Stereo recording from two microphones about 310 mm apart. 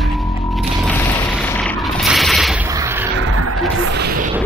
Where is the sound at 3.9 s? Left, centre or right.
Right.